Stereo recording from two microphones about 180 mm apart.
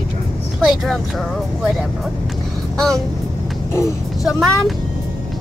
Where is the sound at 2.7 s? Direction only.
5° left (ahead or behind).